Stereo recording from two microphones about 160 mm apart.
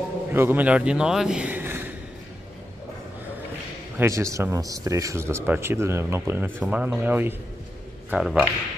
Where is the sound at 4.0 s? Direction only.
20° right (ahead or behind).